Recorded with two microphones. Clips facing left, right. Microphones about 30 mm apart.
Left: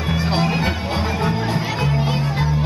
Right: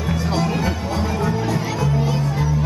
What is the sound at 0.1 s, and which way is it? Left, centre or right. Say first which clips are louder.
Music: left 2 dB; left.